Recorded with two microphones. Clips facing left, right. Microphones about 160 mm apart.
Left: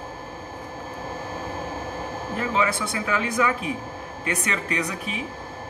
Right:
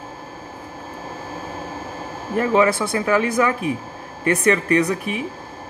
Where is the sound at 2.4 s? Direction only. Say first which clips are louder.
Right 8 dB; 45° right (ahead or behind).